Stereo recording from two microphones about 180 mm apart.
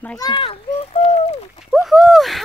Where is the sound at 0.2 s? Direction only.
25° left (ahead or behind).